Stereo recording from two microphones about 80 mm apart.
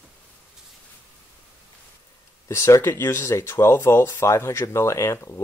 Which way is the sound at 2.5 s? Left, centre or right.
Left.